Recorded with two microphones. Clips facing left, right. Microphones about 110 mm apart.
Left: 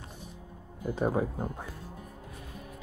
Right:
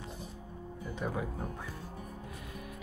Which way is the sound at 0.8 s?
40° left (ahead or behind).